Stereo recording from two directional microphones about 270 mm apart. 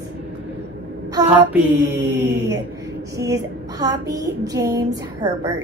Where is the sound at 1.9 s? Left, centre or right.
Right.